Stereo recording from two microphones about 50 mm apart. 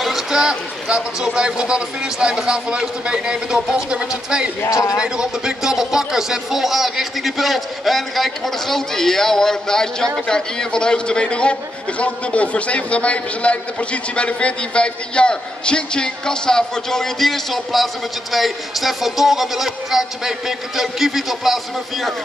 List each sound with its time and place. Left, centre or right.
0.0 s speech: centre
4.6 s a man's voice: left
4.9 s a man's voice: centre